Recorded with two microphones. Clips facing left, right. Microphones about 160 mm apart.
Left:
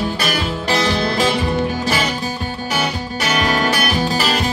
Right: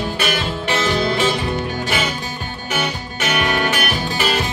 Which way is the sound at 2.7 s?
35° left (ahead or behind).